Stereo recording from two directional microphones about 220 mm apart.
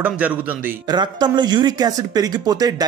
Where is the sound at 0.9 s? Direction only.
20° right (ahead or behind).